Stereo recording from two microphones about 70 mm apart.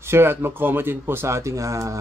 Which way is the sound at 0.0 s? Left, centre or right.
Right.